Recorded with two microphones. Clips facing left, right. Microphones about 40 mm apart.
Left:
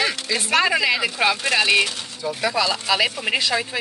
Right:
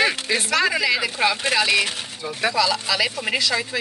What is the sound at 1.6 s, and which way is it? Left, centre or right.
Speech, left.